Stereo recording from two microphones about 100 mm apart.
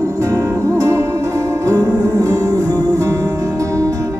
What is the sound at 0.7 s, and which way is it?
Music, 30° right (ahead or behind).